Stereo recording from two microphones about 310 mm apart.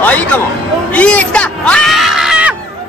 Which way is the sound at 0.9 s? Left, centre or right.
Centre.